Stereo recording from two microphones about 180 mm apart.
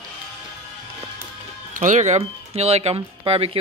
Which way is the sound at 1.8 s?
40° right (ahead or behind).